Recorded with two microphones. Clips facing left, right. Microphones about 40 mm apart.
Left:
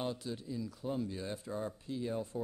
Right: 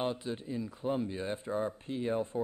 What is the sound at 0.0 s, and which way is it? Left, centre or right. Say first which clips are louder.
Speech: right 4 dB; right.